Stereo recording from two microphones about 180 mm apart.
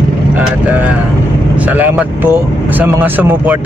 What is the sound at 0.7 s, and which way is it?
Speech, 10° right (ahead or behind).